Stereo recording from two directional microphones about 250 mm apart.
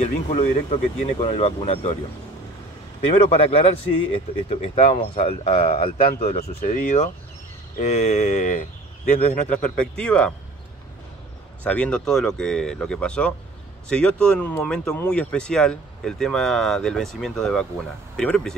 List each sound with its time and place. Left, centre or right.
0.0 s speech: left
3.1 s speech: left
6.3 s speech: left
9.5 s speech: centre
11.6 s speech: centre